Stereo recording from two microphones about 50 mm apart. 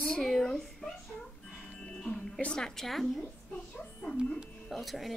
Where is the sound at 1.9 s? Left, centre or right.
Centre.